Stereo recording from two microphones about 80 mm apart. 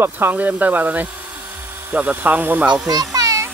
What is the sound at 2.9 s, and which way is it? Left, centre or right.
Children playing, right.